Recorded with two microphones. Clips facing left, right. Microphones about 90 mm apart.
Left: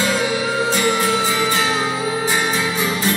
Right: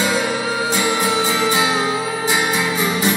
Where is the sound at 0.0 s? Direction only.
5° right (ahead or behind).